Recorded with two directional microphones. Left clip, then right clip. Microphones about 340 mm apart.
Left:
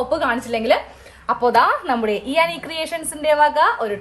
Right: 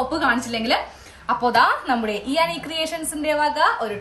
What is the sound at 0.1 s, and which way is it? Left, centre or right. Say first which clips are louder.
A woman's voice: left 1 dB; centre.